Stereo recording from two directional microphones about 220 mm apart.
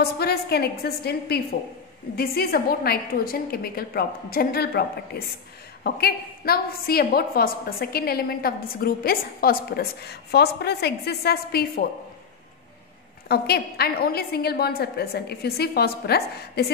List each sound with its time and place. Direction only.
0.0 s a woman's voice: 45° left (ahead or behind)
13.3 s a woman's voice: 45° left (ahead or behind)